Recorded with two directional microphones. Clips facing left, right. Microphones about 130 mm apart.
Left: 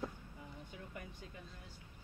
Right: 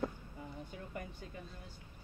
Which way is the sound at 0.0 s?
50° right (ahead or behind).